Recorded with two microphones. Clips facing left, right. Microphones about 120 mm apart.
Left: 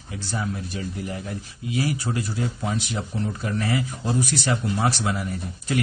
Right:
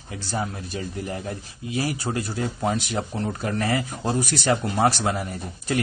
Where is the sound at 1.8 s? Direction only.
35° right (ahead or behind).